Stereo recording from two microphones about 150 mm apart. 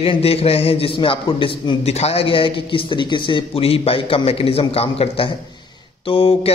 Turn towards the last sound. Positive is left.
turn(degrees=40)  # may be behind; listen again after turning